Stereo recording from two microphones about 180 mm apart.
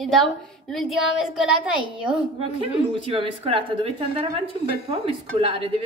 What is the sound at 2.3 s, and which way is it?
A woman's voice, 30° right (ahead or behind).